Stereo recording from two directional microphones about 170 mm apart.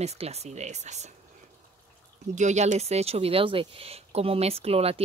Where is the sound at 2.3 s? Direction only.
45° right (ahead or behind).